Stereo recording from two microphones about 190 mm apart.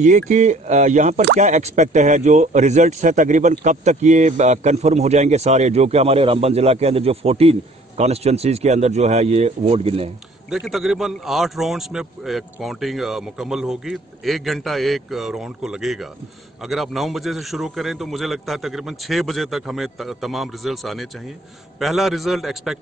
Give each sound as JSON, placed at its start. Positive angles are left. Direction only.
{"t": 0.3, "sound": "speech", "side_deg": -40}
{"t": 10.5, "sound": "a man's voice", "side_deg": 0}